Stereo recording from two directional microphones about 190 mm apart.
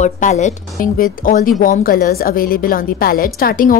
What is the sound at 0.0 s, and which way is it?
Speech, 40° left (ahead or behind).